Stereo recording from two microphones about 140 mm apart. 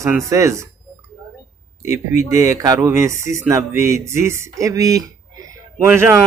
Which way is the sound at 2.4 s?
25° right (ahead or behind).